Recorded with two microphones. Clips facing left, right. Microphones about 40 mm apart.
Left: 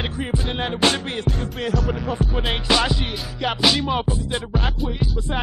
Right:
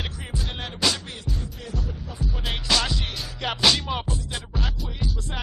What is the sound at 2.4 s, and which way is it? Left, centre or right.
Music, left.